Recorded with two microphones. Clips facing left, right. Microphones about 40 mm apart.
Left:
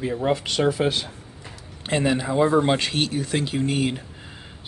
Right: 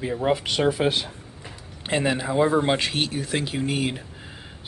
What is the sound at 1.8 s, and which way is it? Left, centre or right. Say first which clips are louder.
Speech: left 1 dB; centre.